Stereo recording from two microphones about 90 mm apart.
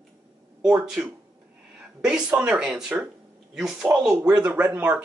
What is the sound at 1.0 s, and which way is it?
Speech, 15° right (ahead or behind).